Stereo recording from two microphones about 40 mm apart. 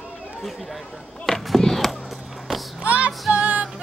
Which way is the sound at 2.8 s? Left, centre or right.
Right.